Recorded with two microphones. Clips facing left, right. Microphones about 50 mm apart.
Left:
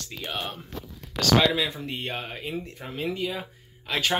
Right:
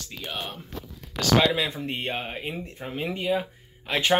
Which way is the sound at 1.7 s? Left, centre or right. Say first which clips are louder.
Right 2 dB; right.